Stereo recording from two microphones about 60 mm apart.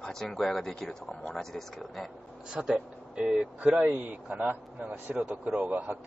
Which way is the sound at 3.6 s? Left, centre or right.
Right.